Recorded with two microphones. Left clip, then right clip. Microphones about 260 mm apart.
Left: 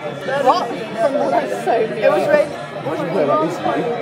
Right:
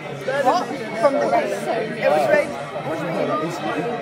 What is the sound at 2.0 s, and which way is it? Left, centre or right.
Speech, centre.